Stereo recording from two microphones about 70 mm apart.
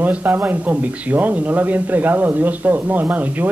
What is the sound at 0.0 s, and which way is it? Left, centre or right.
Speech, right.